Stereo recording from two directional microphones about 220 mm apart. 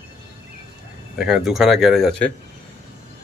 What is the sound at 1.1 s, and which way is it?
Speech, centre (ahead or behind).